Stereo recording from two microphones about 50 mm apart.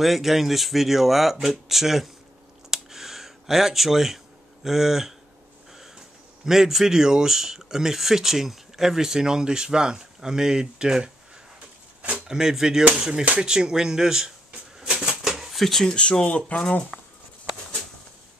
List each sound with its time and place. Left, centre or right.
0.0 s speech: centre
2.7 s a sound: centre
4.6 s speech: centre
12.3 s speech: centre
14.5 s a sound: right
15.5 s speech: centre
15.9 s speech: centre